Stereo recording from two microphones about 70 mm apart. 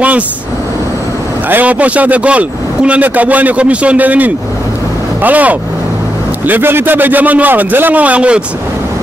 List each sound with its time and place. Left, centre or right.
1.5 s speech: right